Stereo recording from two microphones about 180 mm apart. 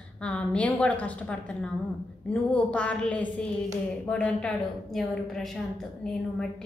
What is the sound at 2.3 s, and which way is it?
A woman's voice, 5° left (ahead or behind).